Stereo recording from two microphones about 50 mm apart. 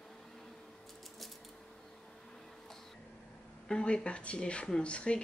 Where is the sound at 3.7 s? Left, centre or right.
Centre.